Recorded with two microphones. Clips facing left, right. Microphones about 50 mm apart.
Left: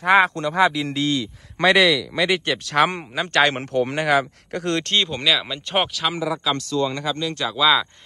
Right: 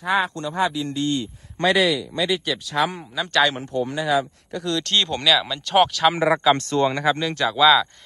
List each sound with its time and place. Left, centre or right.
0.0 s speech: left
1.6 s speech: left
3.2 s speech: left
3.5 s speech: left
4.9 s speech: centre
6.1 s speech: right
6.9 s speech: centre